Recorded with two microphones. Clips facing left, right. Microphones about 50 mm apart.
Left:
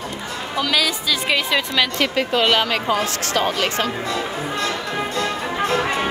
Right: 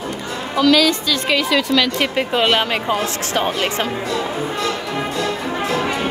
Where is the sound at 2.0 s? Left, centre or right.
Centre.